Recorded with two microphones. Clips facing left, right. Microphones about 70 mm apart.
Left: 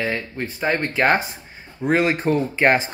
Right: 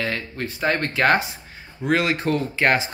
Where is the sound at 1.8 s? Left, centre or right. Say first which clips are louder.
Left 2 dB; left.